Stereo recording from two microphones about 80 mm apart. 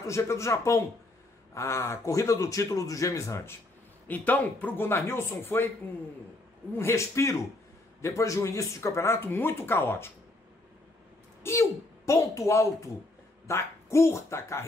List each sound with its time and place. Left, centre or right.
0.0 s speech: left
4.1 s speech: left
6.7 s speech: left
11.4 s speech: left